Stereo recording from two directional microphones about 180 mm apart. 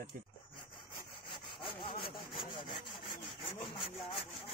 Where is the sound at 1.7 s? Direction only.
30° left (ahead or behind).